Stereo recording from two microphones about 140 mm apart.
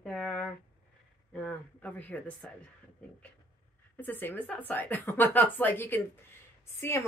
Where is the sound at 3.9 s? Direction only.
15° left (ahead or behind).